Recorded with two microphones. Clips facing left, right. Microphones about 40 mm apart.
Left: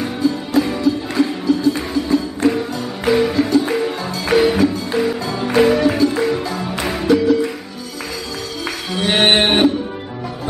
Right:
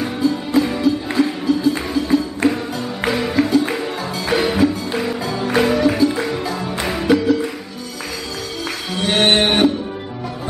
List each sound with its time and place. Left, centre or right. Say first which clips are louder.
0.0 s music: even; centre
9.0 s music: left 1 dB; centre